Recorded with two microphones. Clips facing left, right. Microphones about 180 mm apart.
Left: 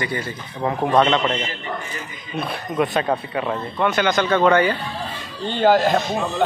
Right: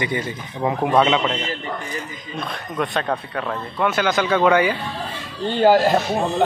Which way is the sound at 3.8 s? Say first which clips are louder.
Even; 5° right (ahead or behind).